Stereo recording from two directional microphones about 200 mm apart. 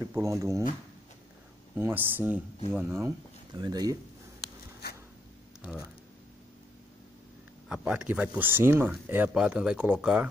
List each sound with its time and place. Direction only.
0.1 s speech: 15° right (ahead or behind)
1.8 s speech: 10° right (ahead or behind)
5.6 s speech: 5° right (ahead or behind)
7.6 s speech: 5° right (ahead or behind)